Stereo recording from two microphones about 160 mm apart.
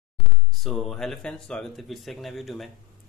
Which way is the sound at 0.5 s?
Centre (ahead or behind).